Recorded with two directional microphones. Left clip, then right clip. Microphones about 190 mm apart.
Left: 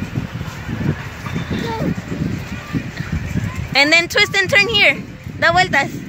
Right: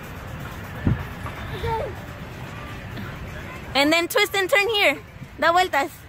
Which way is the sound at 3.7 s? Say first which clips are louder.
Left 6 dB; 10° right (ahead or behind).